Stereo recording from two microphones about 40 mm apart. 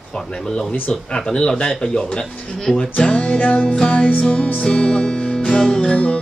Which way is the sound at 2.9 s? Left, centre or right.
Left.